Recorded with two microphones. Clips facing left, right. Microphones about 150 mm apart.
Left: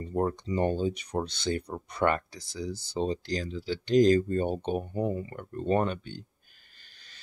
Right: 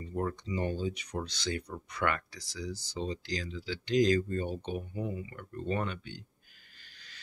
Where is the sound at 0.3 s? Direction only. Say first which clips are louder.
Left 4 dB; 30° left (ahead or behind).